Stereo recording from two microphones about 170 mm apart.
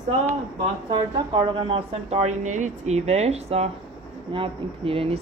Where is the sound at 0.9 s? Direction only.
30° right (ahead or behind).